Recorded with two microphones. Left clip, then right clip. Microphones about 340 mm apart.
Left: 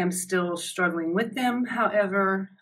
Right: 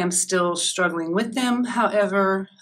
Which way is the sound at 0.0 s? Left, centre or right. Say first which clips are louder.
Right 5 dB; centre.